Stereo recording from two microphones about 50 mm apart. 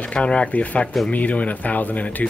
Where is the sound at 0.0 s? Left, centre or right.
Left.